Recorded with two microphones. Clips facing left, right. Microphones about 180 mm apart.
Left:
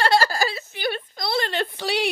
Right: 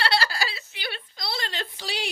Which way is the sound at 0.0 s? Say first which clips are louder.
Left 6 dB; 45° left (ahead or behind).